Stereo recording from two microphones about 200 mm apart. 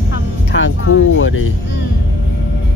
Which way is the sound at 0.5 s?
70° left (ahead or behind).